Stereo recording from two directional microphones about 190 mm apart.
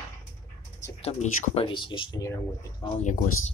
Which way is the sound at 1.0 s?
30° left (ahead or behind).